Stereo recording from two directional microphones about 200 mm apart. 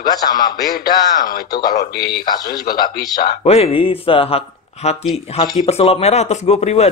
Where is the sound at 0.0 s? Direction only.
20° left (ahead or behind).